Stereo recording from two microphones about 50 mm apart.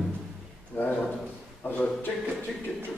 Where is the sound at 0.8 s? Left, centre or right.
Left.